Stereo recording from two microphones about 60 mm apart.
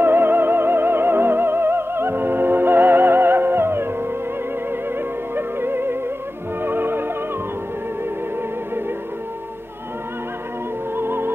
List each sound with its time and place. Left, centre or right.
0.0 s music: right
5.3 s music: right
11.0 s music: right